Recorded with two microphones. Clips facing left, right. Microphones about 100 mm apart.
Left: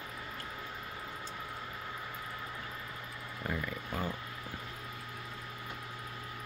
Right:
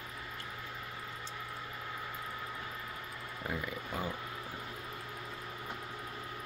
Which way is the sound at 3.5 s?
10° right (ahead or behind).